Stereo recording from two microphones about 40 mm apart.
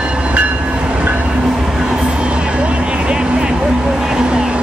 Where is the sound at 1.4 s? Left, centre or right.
Centre; by 4.6 s right.